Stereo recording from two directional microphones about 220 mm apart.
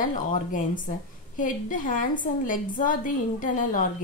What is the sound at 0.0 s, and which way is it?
A woman's voice, 35° left (ahead or behind).